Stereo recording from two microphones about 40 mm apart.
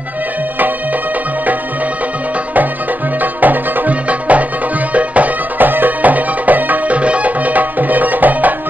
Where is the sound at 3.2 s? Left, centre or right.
Right.